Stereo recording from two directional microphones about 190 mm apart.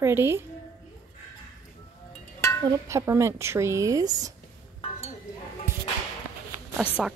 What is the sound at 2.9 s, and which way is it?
A woman's voice, 15° right (ahead or behind).